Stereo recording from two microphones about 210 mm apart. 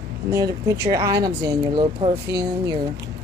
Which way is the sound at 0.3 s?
15° right (ahead or behind).